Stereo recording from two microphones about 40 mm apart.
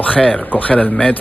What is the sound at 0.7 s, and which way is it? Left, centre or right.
Speech, left.